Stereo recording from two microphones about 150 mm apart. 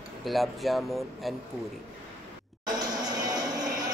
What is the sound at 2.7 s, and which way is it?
Music, 25° right (ahead or behind).